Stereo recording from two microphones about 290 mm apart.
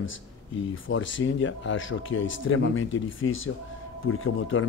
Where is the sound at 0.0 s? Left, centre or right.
Left.